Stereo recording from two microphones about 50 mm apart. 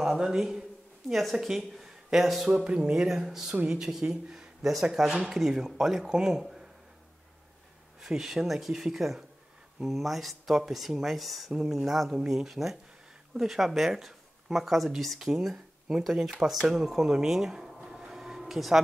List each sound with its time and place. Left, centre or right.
0.0 s speech: centre
2.5 s speech: centre
8.0 s speech: centre
17.8 s a sound: centre